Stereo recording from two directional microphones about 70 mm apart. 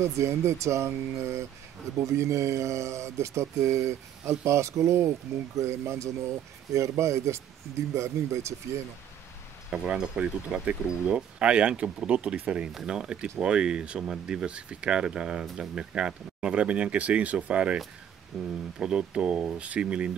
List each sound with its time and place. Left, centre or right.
0.0 s speech: right
9.7 s speech: centre
18.3 s speech: centre
18.8 s speech: centre